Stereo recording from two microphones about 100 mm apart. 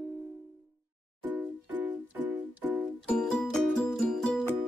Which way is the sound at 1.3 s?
15° right (ahead or behind).